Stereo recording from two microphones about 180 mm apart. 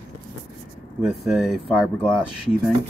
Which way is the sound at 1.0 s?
5° right (ahead or behind).